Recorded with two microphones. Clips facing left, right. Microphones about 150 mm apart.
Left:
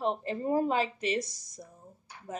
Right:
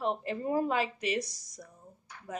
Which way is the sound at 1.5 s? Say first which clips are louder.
Left 2 dB; 30° left (ahead or behind).